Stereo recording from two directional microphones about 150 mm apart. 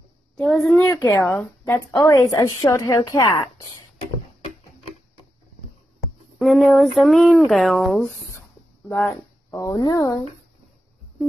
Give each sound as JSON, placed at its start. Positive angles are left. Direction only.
{"t": 0.4, "sound": "a woman's voice", "side_deg": 5}
{"t": 6.3, "sound": "speech", "side_deg": 0}
{"t": 8.4, "sound": "a sound", "side_deg": 15}